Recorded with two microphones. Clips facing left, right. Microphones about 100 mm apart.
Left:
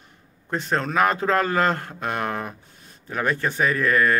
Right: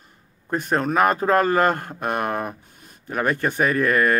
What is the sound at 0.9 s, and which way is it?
Speech, 40° right (ahead or behind).